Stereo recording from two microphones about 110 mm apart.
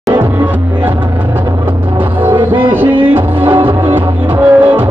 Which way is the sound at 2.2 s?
20° right (ahead or behind).